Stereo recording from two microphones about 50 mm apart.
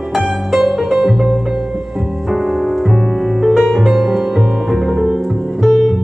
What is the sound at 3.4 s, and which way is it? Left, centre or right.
Music, centre.